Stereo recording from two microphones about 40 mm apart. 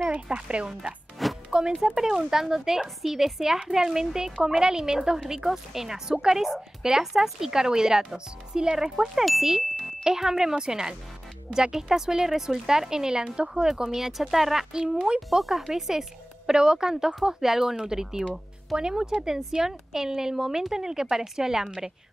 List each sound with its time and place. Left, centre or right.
0.0 s speech: right
1.2 s music: centre
2.0 s speech: centre
9.2 s speech: centre
10.0 s speech: centre
15.1 s speech: centre